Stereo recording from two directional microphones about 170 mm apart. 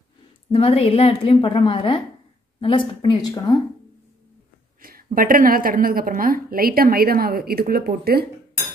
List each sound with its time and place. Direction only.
0.5 s a woman's voice: 35° left (ahead or behind)
4.8 s a woman's voice: 55° right (ahead or behind)